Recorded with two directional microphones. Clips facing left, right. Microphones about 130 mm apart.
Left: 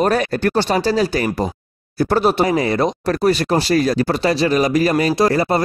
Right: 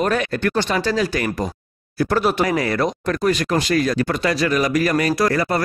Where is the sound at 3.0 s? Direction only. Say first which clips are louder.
Left 3 dB; 35° left (ahead or behind).